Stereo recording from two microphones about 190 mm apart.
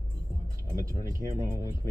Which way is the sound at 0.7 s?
15° right (ahead or behind).